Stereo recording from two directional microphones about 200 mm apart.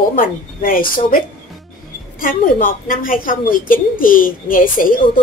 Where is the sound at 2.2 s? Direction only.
45° left (ahead or behind).